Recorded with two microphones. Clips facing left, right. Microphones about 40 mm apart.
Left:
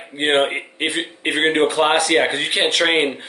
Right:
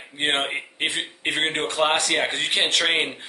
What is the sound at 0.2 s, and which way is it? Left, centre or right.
Speech, centre.